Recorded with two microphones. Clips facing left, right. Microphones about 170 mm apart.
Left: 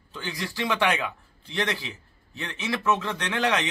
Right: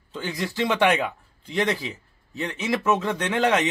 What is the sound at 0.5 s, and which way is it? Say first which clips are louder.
Speech: right 4 dB; 20° right (ahead or behind).